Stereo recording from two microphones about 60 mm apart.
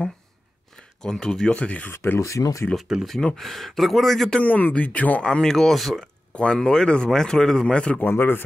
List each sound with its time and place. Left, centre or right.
1.0 s speech: centre
1.5 s speech: left
1.9 s speech: left
2.9 s speech: centre
3.3 s speech: centre
4.4 s speech: left
5.2 s speech: centre
6.3 s speech: centre
8.0 s speech: left